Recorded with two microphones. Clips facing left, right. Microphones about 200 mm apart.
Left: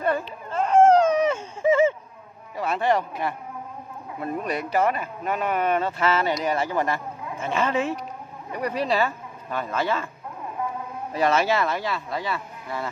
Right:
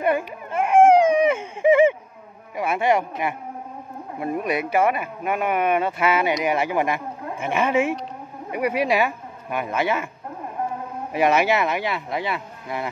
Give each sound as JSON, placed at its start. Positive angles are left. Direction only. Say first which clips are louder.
{"t": 0.0, "sound": "baby cry", "louder": "right 3 dB", "side_deg": -15}
{"t": 2.5, "sound": "a sound", "louder": "right 2 dB", "side_deg": -10}
{"t": 4.2, "sound": "speech", "louder": "right 4 dB", "side_deg": -10}
{"t": 11.1, "sound": "speech", "louder": "right 2 dB", "side_deg": -15}